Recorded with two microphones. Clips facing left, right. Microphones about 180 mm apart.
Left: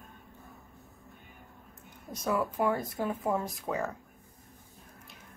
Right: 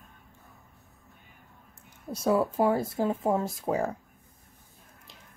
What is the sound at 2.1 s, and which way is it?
A woman's voice, 30° right (ahead or behind).